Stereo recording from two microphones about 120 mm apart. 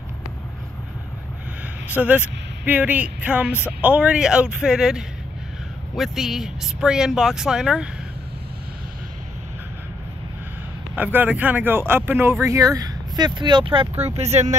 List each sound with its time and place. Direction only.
2.0 s speech: 10° right (ahead or behind)
11.0 s speech: 15° right (ahead or behind); by 14.5 s 65° right (ahead or behind)